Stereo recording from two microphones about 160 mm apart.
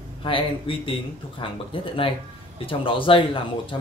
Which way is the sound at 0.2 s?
35° left (ahead or behind).